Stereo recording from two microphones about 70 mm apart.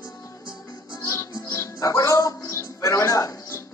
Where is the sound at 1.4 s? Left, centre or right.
Left.